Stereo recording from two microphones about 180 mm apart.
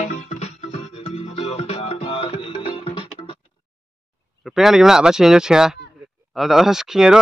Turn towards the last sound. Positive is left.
turn(degrees=-5)  # may be behind; listen again after turning